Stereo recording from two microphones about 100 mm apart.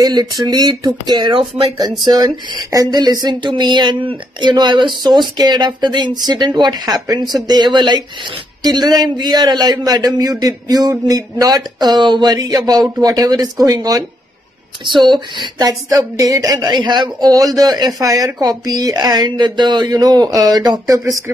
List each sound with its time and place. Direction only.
0.0 s a man's voice: 40° right (ahead or behind)
14.9 s speech: 50° right (ahead or behind)